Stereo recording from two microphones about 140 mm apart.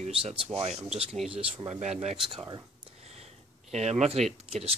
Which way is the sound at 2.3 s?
30° right (ahead or behind).